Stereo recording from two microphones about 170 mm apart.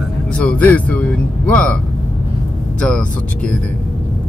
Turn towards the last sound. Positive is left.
turn(degrees=5)  # may be behind; listen again after turning